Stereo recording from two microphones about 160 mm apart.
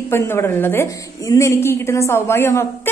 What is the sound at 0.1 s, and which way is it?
A woman's voice, 15° left (ahead or behind).